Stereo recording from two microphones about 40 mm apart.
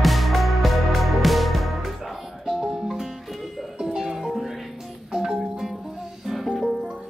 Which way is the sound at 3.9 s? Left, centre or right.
Centre.